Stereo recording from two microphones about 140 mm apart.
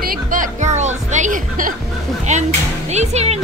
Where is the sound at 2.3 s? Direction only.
55° right (ahead or behind).